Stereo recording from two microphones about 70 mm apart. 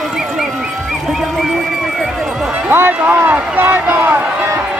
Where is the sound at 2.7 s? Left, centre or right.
Right.